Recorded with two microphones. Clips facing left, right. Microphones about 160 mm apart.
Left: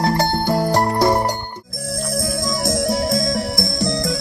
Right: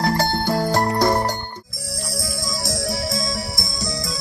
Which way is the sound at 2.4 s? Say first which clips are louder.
Left 6 dB; 50° left (ahead or behind).